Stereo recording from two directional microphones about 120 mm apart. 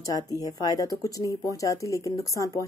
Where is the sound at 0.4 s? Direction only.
30° left (ahead or behind).